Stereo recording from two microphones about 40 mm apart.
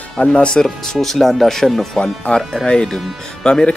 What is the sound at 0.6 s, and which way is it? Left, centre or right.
Speech, centre.